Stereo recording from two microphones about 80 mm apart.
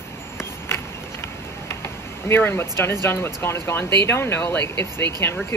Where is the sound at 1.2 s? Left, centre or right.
Left.